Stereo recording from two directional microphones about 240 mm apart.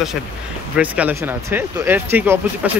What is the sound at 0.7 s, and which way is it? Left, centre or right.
Speech, centre.